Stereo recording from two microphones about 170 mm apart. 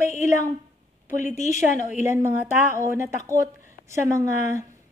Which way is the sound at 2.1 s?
15° right (ahead or behind).